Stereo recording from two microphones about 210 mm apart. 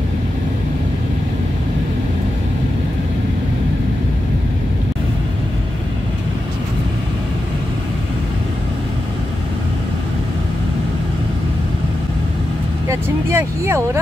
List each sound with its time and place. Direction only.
12.8 s vehicle: 10° right (ahead or behind)